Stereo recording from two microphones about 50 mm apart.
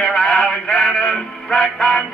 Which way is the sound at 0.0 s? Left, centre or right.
Centre.